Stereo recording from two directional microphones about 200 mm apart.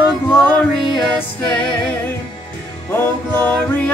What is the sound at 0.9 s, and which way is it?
Music, 5° left (ahead or behind).